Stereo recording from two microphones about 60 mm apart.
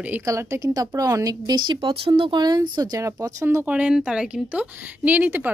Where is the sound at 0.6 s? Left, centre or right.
Right.